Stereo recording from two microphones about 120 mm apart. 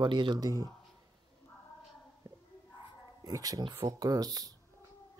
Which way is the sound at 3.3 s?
30° right (ahead or behind).